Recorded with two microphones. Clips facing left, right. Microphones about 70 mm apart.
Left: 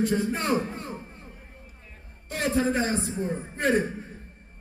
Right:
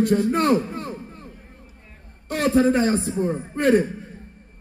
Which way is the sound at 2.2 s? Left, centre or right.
Right.